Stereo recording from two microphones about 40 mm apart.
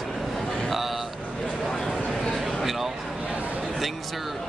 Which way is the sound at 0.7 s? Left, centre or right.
Centre.